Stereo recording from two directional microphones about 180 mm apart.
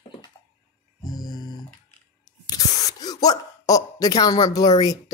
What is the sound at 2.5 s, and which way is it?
Speech, 20° left (ahead or behind).